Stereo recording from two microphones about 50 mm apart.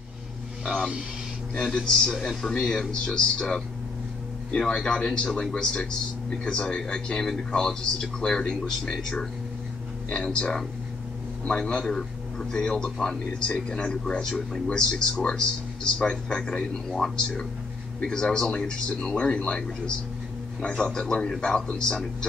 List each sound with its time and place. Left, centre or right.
1.6 s a man's voice: centre
20.6 s a man's voice: centre